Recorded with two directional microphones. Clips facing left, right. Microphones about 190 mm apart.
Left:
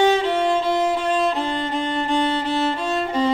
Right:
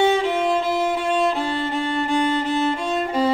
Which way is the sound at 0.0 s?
5° right (ahead or behind).